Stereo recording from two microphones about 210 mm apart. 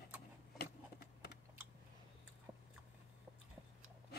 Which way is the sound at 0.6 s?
50° left (ahead or behind).